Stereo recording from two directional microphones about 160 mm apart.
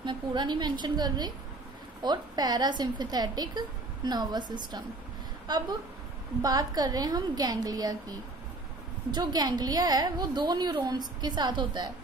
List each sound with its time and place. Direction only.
0.0 s a woman's voice: 30° right (ahead or behind)
9.1 s a woman's voice: 25° right (ahead or behind)